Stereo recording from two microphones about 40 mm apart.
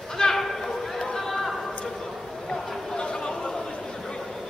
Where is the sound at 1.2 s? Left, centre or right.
Centre.